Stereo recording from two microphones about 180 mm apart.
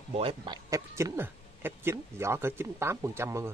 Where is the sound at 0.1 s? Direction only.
30° right (ahead or behind).